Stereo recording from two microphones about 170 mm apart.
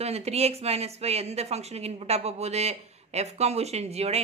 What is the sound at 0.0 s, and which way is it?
Speech, 40° right (ahead or behind).